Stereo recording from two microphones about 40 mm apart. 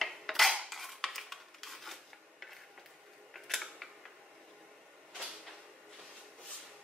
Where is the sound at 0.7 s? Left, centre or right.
Centre.